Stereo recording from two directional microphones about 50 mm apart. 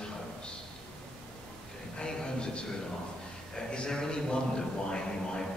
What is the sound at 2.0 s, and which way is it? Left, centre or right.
A man's voice, centre.